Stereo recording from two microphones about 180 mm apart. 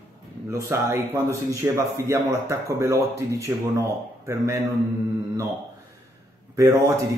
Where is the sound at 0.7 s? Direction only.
15° right (ahead or behind).